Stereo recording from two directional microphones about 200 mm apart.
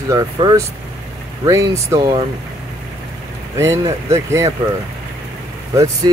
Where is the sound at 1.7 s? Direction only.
15° right (ahead or behind).